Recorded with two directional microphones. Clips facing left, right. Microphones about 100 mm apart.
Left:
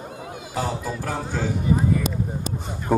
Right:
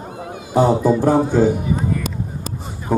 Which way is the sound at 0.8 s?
30° right (ahead or behind).